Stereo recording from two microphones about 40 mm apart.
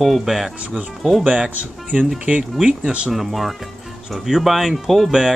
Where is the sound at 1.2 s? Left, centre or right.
Right.